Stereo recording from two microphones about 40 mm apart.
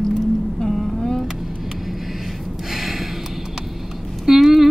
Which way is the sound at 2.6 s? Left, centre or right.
Centre.